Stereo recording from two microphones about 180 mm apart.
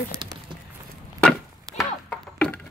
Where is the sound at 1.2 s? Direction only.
Centre (ahead or behind).